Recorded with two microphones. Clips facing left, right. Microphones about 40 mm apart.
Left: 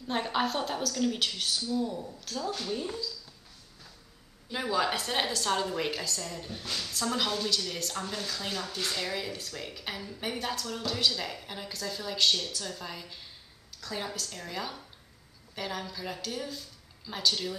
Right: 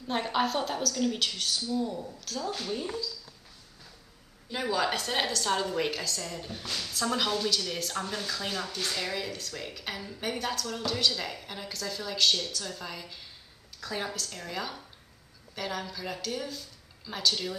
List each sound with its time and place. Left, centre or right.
0.1 s a woman's voice: centre
4.5 s a woman's voice: centre
13.7 s a woman's voice: centre
14.1 s a woman's voice: centre